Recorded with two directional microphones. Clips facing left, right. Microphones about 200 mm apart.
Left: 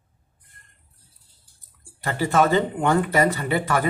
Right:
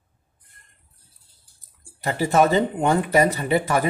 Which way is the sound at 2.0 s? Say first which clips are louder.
Right 2 dB; 20° right (ahead or behind).